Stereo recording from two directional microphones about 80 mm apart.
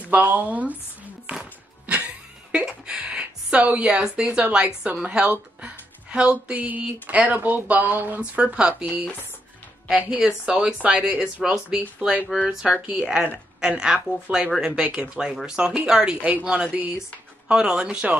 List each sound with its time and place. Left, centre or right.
0.0 s speech: right
1.3 s a sound: centre
5.0 s speech: centre
17.5 s speech: centre